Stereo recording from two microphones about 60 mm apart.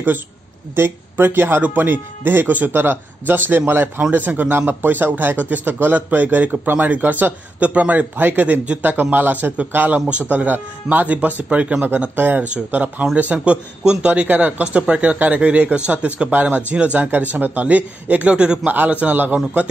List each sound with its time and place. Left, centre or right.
0.7 s a man's voice: right